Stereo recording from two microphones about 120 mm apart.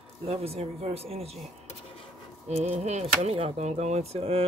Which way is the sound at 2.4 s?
65° right (ahead or behind).